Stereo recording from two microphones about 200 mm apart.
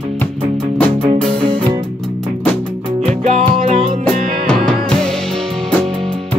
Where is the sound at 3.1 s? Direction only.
35° right (ahead or behind).